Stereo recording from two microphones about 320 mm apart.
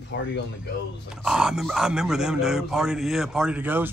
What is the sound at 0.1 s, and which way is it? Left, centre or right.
Speech, left.